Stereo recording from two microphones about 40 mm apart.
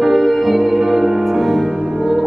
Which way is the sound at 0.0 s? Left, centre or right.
Centre.